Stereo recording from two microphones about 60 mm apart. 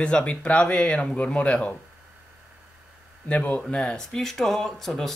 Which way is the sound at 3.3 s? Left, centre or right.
Left.